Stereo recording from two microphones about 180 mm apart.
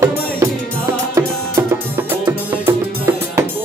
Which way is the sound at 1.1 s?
15° right (ahead or behind).